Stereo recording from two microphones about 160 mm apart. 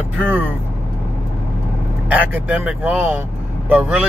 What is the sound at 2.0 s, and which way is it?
Speech, 10° right (ahead or behind).